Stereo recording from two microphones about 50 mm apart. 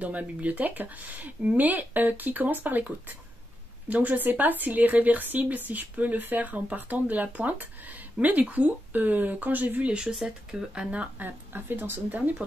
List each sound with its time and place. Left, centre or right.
0.0 s speech: right
3.9 s speech: right
9.9 s speech: centre
11.1 s speech: right